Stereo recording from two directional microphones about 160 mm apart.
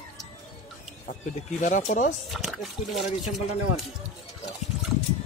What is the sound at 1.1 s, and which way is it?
Speech, 55° left (ahead or behind).